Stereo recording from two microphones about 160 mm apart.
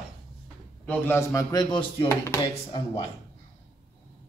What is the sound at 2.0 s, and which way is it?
Speech, 20° left (ahead or behind).